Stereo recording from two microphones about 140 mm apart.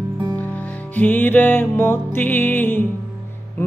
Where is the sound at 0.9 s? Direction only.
15° left (ahead or behind).